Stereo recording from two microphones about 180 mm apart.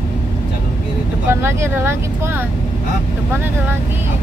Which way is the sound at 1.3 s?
15° right (ahead or behind).